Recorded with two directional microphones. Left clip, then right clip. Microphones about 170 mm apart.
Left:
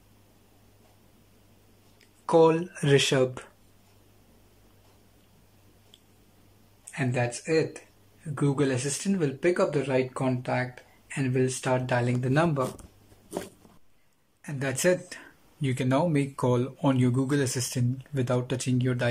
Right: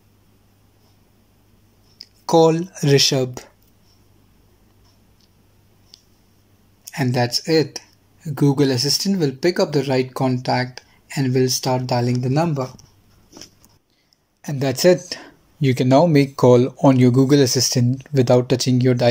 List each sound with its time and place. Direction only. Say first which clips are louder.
2.2 s speech: right 6 dB; 30° right (ahead or behind)
6.9 s speech: right 8 dB; 40° right (ahead or behind)
7.3 s speech: right 9 dB; 50° right (ahead or behind)
8.4 s speech: right 9 dB; 35° right (ahead or behind)
11.7 s speech: right 6 dB; 30° right (ahead or behind)
14.4 s speech: right 10 dB; 20° right (ahead or behind)